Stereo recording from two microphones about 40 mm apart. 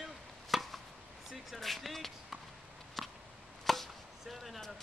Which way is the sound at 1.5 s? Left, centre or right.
Centre.